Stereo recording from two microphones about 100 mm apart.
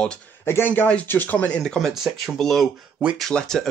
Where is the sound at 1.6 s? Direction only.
5° left (ahead or behind).